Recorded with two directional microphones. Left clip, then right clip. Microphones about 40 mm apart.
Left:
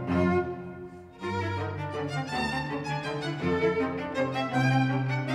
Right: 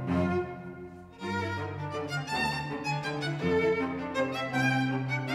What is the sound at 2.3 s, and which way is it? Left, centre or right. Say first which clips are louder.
Violin: even; right.